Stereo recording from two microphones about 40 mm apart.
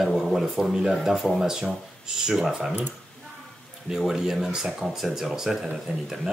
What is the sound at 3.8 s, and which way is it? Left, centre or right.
Speech, centre.